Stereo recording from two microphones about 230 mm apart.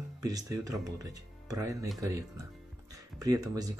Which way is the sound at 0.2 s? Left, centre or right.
Centre.